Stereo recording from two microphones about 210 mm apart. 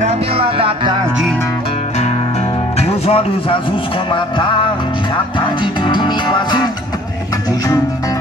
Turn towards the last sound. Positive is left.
turn(degrees=20)  # may be behind; listen again after turning